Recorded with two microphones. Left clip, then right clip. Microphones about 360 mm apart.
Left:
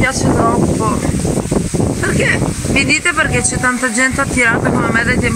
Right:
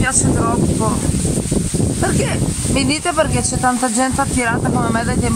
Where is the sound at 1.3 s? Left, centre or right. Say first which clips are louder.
Left 4 dB; left.